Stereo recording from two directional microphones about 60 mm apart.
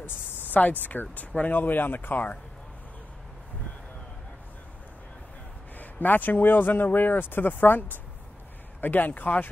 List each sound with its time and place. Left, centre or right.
0.0 s speech: left
5.8 s speech: left